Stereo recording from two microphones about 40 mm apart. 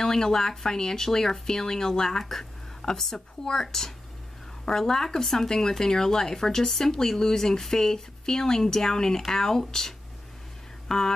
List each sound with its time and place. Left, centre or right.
0.0 s speech: centre